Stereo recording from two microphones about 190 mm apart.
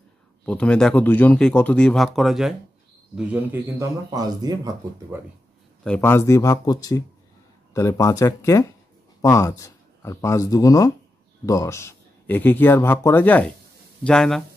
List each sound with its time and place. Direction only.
0.5 s speech: 5° left (ahead or behind)
4.1 s speech: 20° right (ahead or behind)
5.9 s speech: 10° left (ahead or behind)